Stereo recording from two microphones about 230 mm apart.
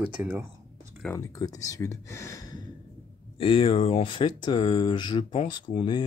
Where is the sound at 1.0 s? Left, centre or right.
Centre.